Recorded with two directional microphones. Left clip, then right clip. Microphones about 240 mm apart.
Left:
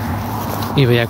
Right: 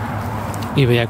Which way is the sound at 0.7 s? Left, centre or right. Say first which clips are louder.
Left 1 dB; centre.